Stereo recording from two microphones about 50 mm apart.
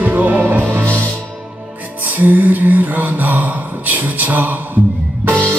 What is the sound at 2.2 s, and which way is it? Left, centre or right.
Mantra, right.